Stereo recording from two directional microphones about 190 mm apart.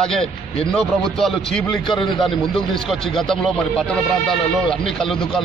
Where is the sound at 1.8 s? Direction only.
25° left (ahead or behind).